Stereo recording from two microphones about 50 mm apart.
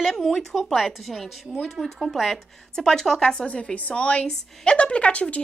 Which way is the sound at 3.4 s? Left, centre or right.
Left.